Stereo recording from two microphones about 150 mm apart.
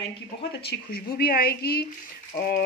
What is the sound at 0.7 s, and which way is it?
A woman's voice, 90° left.